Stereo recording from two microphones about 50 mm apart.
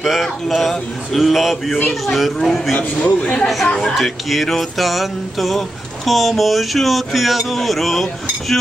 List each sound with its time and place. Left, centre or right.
0.0 s music: centre
3.2 s speech: left
3.9 s music: centre